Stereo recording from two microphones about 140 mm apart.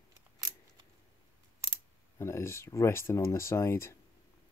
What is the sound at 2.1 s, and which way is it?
Speech, 20° left (ahead or behind).